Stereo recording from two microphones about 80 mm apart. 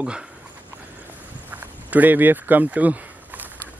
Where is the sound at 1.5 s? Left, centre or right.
Centre.